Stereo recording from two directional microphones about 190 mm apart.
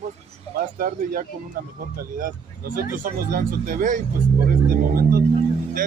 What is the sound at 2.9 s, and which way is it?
Speech, 50° right (ahead or behind).